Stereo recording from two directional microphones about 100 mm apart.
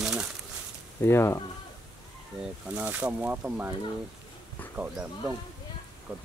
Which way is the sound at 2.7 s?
15° right (ahead or behind).